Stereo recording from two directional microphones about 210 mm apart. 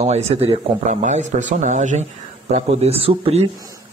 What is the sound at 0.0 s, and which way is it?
Speech, 30° right (ahead or behind).